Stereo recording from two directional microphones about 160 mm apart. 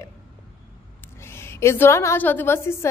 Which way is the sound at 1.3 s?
15° left (ahead or behind).